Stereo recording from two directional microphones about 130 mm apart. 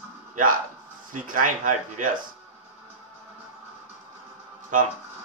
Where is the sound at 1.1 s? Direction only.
90° right.